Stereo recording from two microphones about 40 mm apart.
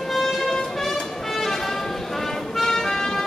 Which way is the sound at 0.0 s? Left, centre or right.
Centre.